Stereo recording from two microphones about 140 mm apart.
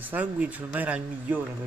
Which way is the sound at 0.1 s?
10° right (ahead or behind).